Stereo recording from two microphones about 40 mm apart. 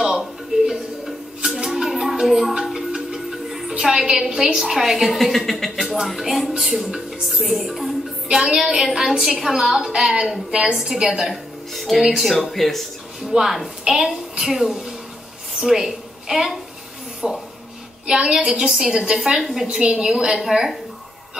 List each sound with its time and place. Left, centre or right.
0.7 s music: centre
3.9 s a woman's voice: centre
8.3 s a woman's voice: centre
11.7 s a woman's voice: centre
13.2 s a woman's voice: centre
17.2 s speech: right
18.2 s a woman's voice: centre